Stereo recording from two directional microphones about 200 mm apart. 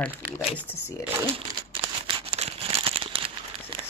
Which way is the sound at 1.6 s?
25° right (ahead or behind).